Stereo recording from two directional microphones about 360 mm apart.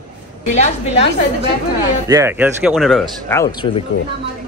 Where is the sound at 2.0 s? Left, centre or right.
Centre.